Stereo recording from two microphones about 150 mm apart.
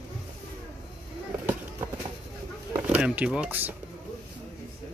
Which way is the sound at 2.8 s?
10° right (ahead or behind).